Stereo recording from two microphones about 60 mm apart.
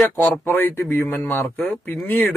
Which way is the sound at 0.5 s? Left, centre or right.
Left.